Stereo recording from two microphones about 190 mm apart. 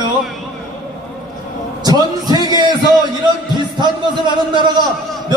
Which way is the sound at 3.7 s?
25° right (ahead or behind).